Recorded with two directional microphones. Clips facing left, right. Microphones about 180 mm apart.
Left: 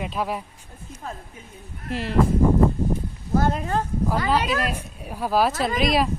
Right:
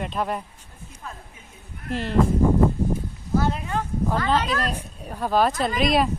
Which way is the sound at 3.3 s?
45° left (ahead or behind).